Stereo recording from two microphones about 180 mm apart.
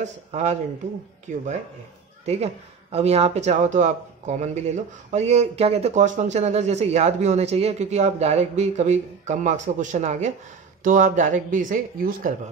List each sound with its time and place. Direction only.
0.0 s speech: 40° right (ahead or behind)